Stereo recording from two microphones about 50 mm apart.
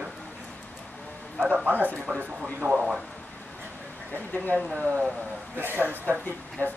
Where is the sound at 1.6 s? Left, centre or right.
Right.